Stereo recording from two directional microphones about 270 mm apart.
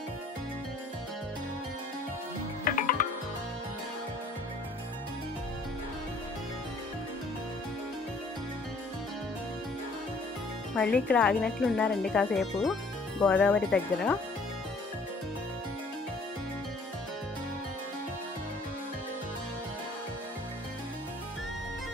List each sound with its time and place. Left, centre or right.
2.6 s music: left
11.1 s speech: centre